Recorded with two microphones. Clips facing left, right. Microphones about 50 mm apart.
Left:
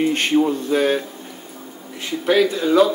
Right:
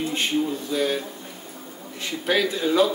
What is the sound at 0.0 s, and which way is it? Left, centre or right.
Speech, left.